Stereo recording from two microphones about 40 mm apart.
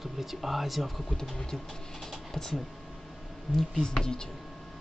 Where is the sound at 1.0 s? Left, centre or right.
Centre.